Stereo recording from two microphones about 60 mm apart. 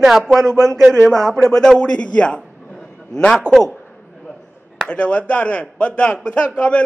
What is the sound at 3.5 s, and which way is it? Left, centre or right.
Speech, right.